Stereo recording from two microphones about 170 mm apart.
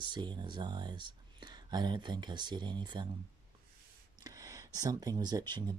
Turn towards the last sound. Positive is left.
turn(degrees=-25)  # may be behind; listen again after turning